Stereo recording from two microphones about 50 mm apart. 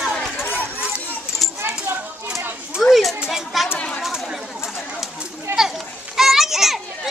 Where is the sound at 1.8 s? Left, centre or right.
Right.